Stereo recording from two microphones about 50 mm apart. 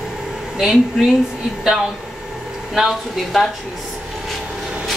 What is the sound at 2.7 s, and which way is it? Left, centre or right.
Speech, centre.